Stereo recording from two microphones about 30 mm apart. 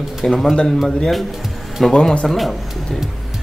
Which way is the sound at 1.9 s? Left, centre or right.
Centre.